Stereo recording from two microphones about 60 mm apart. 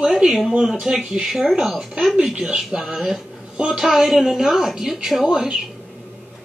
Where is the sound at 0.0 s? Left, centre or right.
Centre.